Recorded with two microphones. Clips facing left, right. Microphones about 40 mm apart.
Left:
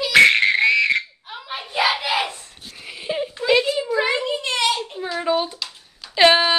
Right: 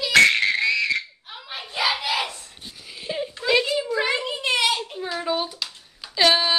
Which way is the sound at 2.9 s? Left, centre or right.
Centre.